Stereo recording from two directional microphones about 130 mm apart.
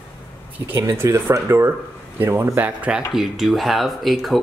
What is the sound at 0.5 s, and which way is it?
A man's voice, 15° right (ahead or behind).